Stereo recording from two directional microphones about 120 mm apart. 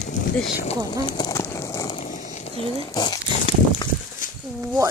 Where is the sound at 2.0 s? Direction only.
90° left; by 2.7 s 70° left (ahead or behind).